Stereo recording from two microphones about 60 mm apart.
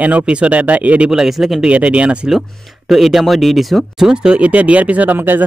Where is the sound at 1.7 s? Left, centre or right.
Right.